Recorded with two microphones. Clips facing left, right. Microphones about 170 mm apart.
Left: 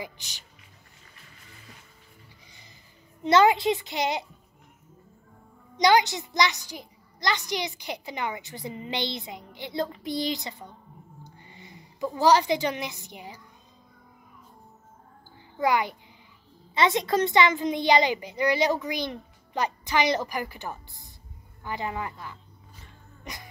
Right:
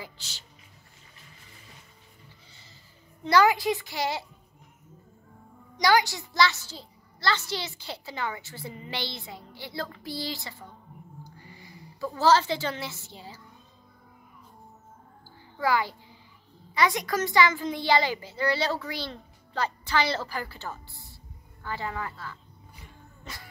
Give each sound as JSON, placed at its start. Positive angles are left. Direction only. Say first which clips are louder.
{"t": 0.0, "sound": "a child's voice", "louder": "left 4 dB", "side_deg": 15}
{"t": 3.2, "sound": "a child's voice", "louder": "left 2 dB", "side_deg": 20}
{"t": 5.8, "sound": "a child's voice", "louder": "left 2 dB", "side_deg": 20}
{"t": 15.6, "sound": "a child's voice", "louder": "left 2 dB", "side_deg": 20}